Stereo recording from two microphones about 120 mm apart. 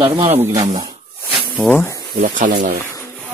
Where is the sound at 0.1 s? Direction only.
50° right (ahead or behind).